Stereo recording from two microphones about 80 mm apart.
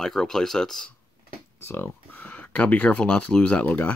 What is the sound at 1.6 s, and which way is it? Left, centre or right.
Speech, left.